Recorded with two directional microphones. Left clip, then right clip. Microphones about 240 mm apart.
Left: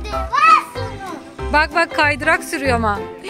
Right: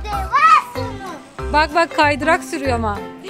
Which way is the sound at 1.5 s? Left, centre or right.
Centre.